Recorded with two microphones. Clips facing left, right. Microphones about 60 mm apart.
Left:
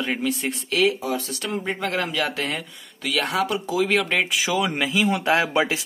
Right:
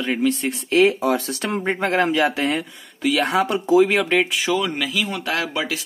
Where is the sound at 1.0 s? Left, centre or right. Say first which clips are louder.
Right 6 dB; right.